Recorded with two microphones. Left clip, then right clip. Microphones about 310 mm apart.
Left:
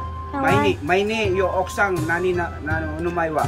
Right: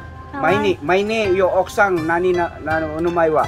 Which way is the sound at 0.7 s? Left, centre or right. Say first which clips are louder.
Right 2 dB; centre.